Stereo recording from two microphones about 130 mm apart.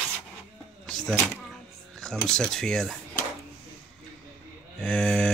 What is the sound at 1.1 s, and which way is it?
Speech, 15° left (ahead or behind).